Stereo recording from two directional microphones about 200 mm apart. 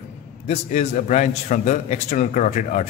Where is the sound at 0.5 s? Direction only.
35° left (ahead or behind).